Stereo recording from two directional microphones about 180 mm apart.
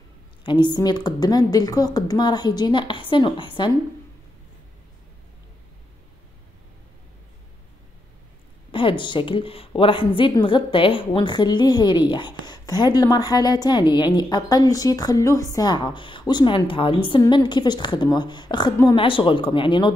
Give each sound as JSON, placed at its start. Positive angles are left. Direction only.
{"t": 0.7, "sound": "a woman's voice", "side_deg": 25}
{"t": 8.7, "sound": "a woman's voice", "side_deg": 30}